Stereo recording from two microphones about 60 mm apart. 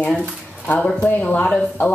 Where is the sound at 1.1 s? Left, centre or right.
Left.